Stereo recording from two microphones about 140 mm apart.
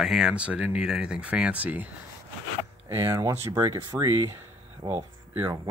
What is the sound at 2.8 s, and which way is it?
Speech, 20° right (ahead or behind).